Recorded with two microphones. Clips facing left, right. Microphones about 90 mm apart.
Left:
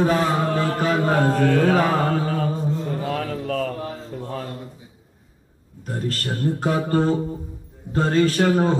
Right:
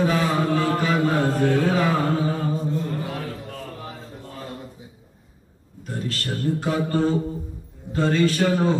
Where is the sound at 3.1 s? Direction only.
90° left.